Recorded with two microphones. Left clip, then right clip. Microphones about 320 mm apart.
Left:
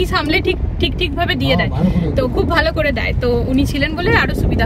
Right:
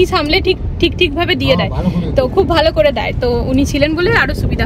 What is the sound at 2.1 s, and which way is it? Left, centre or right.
Speech, right.